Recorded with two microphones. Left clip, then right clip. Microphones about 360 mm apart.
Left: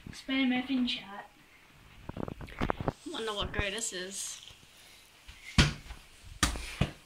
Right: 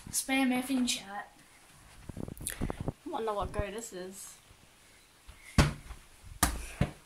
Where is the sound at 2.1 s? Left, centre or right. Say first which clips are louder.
Left 3 dB; left.